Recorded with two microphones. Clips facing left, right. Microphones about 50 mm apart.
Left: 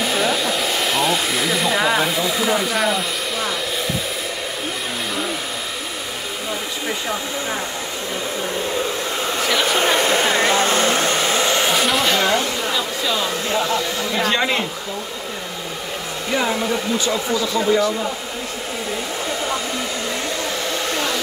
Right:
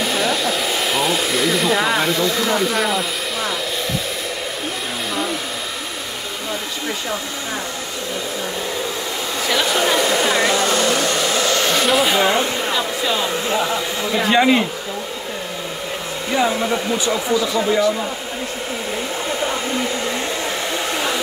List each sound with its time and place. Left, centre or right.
0.0 s hair dryer: centre
9.8 s vehicle: left
11.7 s a sound: centre
12.7 s speech: centre
17.0 s speech: centre
20.7 s hair dryer: centre